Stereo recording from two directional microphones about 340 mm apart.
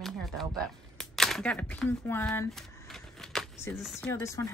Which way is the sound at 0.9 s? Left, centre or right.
Centre.